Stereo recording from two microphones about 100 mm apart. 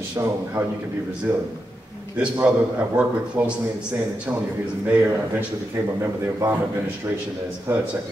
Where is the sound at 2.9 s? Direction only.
10° right (ahead or behind).